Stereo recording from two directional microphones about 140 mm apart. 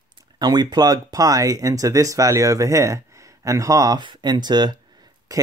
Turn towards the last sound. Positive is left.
turn(degrees=-30)  # may be behind; listen again after turning